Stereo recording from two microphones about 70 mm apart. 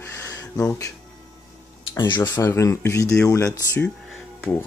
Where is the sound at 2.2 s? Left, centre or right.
Left.